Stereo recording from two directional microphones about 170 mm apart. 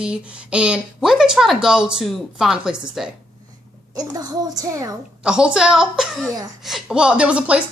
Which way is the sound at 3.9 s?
25° right (ahead or behind).